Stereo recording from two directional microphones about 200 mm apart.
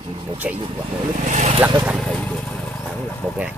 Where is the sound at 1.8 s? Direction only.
Centre (ahead or behind).